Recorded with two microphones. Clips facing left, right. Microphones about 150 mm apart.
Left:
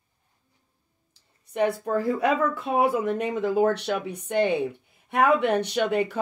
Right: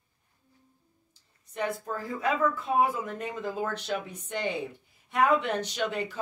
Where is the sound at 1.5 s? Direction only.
65° left (ahead or behind).